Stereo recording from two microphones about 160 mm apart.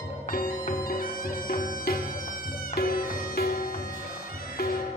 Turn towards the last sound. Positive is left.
turn(degrees=70)  # may be behind; listen again after turning